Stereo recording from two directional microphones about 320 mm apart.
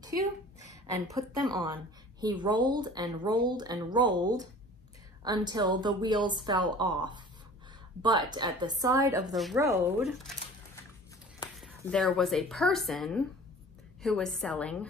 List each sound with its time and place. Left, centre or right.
0.0 s a sound: centre
1.1 s speech: centre
9.3 s speech: centre
11.6 s speech: centre